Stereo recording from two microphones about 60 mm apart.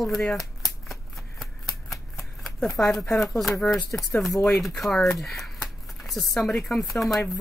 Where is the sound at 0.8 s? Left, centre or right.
Centre.